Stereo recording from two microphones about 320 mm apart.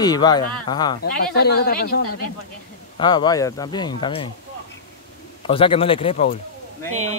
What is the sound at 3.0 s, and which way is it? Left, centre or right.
Speech, centre.